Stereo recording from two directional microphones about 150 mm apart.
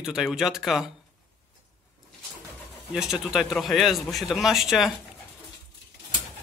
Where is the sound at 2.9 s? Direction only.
5° right (ahead or behind).